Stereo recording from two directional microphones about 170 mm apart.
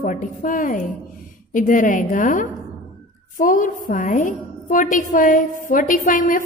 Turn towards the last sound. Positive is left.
turn(degrees=55)  # may be behind; listen again after turning